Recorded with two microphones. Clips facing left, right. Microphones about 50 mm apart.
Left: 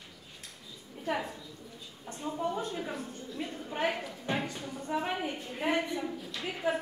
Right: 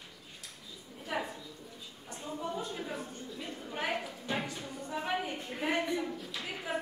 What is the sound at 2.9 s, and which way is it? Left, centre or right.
A woman's voice, centre.